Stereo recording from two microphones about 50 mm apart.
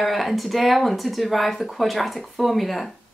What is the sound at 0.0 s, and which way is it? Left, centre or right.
Speech, centre.